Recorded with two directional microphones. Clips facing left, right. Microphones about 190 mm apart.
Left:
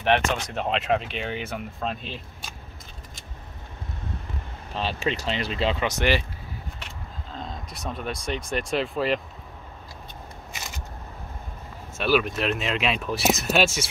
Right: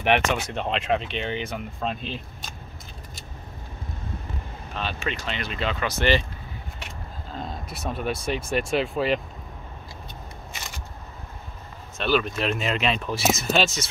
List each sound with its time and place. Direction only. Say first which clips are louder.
0.0 s speech: right 1 dB; 15° right (ahead or behind)
0.6 s speech: left 3 dB; centre (ahead or behind)
4.7 s speech: left 3 dB; 30° left (ahead or behind)
7.3 s speech: right 2 dB; 5° right (ahead or behind)
12.0 s speech: left 1 dB; 5° left (ahead or behind)